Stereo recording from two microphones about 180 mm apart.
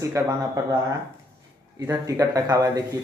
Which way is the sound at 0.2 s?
15° right (ahead or behind).